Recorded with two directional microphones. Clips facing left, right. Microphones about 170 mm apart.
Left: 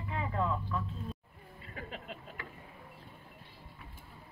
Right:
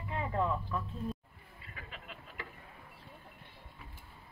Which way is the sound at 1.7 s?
40° left (ahead or behind).